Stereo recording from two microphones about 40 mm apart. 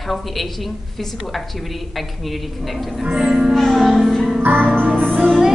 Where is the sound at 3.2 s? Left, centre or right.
Right.